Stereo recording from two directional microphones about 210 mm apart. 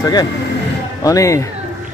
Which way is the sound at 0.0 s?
20° left (ahead or behind).